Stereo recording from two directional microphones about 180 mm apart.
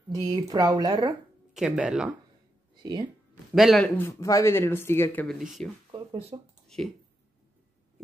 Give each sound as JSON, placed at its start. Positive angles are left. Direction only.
{"t": 0.1, "sound": "speech", "side_deg": -20}
{"t": 1.5, "sound": "speech", "side_deg": -5}
{"t": 2.7, "sound": "a sound", "side_deg": -25}
{"t": 3.5, "sound": "speech", "side_deg": 0}
{"t": 4.0, "sound": "speech", "side_deg": 15}
{"t": 5.9, "sound": "a sound", "side_deg": -25}
{"t": 6.7, "sound": "speech", "side_deg": 5}